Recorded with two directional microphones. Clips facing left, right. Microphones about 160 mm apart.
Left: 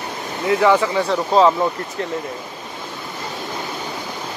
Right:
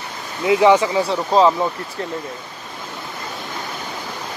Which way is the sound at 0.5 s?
20° right (ahead or behind).